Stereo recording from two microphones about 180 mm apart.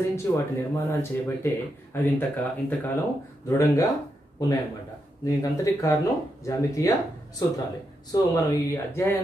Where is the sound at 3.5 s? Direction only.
15° left (ahead or behind).